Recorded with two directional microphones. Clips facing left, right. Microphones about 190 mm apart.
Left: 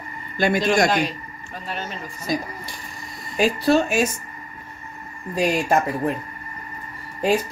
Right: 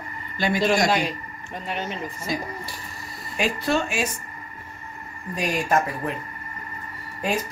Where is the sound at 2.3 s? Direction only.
40° left (ahead or behind).